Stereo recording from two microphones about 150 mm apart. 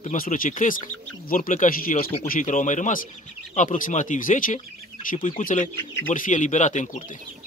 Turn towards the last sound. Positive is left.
turn(degrees=55)  # may be behind; listen again after turning